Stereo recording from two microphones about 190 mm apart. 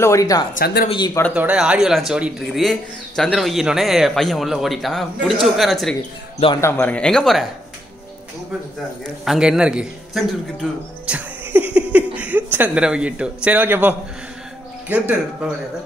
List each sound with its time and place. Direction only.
0.0 s speech: 15° left (ahead or behind)
1.3 s speech: 5° right (ahead or behind)
9.2 s a man's voice: 5° right (ahead or behind)